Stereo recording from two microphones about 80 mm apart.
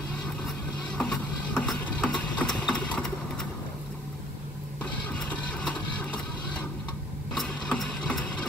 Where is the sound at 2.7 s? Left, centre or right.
Centre.